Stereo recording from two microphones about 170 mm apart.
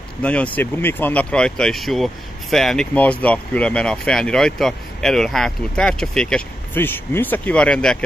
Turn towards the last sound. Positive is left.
turn(degrees=5)  # may be behind; listen again after turning